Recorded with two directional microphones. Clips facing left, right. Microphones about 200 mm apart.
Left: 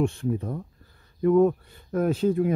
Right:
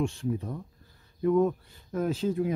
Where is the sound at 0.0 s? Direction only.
55° left (ahead or behind).